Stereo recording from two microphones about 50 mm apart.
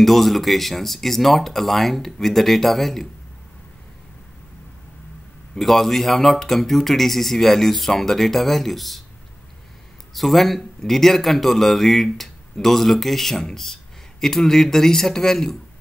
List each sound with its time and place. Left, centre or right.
0.0 s a man's voice: centre
5.5 s a man's voice: centre
10.1 s a man's voice: centre